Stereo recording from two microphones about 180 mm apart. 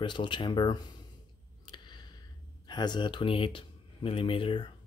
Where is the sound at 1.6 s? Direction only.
25° left (ahead or behind).